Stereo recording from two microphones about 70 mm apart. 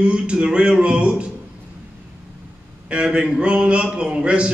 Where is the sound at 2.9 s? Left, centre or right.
Centre.